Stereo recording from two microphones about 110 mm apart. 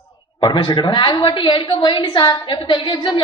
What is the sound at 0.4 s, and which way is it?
A woman's voice, 50° left (ahead or behind).